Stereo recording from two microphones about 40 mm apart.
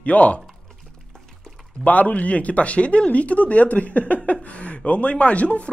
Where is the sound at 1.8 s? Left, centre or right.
Left.